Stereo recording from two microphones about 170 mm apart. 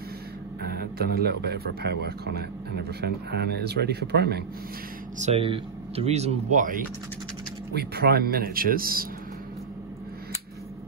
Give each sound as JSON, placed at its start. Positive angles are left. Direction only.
{"t": 0.6, "sound": "speech", "side_deg": -70}
{"t": 5.2, "sound": "speech", "side_deg": -35}
{"t": 7.7, "sound": "speech", "side_deg": -70}